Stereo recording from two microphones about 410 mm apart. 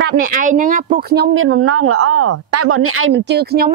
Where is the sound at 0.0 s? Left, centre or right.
Centre.